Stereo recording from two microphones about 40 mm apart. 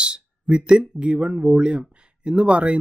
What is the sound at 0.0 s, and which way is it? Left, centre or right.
Speech, right.